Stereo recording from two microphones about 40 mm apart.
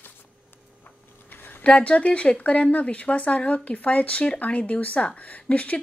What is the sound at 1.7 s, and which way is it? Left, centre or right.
Speech, left.